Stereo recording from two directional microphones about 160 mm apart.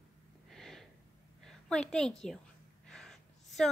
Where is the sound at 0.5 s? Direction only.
Centre (ahead or behind).